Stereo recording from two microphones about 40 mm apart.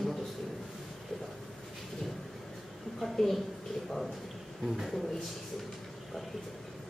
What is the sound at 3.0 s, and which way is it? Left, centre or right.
Speech, centre.